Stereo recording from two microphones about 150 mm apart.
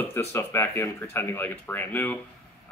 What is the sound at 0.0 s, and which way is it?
Speech, 15° left (ahead or behind).